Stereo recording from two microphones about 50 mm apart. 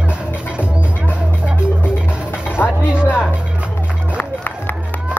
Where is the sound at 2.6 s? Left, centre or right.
Left.